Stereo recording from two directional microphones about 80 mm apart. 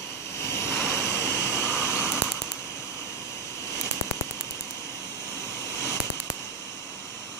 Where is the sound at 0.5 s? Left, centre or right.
Left.